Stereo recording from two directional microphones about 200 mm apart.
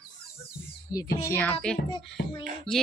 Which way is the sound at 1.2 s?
10° left (ahead or behind).